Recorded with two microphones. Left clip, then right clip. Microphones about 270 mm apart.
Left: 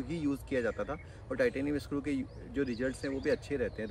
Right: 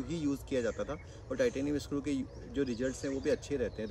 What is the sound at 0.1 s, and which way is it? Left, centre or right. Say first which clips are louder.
Speech: left 1 dB; centre.